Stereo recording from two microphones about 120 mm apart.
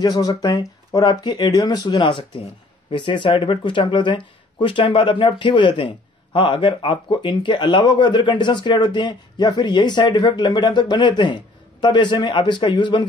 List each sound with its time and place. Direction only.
0.0 s speech: 30° left (ahead or behind)